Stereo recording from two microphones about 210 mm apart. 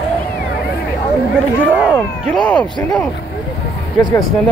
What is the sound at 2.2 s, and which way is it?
Speech, 5° left (ahead or behind).